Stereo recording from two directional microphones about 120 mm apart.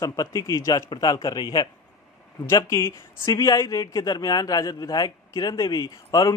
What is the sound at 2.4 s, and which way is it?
Speech, 25° left (ahead or behind).